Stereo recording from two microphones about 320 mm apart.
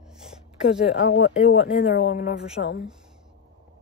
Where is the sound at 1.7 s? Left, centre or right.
Left.